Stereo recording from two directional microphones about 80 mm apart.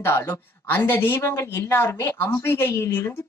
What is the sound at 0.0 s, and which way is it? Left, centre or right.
Speech, left.